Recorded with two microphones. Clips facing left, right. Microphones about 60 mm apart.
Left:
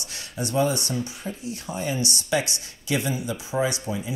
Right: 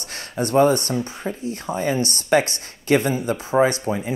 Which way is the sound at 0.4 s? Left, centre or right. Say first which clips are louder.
Right 7 dB; right.